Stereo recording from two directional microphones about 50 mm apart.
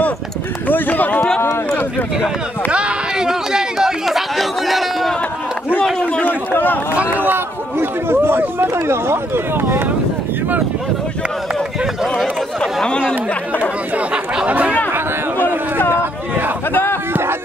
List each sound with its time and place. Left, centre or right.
0.7 s speech: left
2.7 s chatter: centre
6.2 s speech: left
7.2 s speech: right
13.3 s speech: left
13.9 s speech: right
15.9 s speech: right
16.7 s a sound: left
17.1 s a sound: right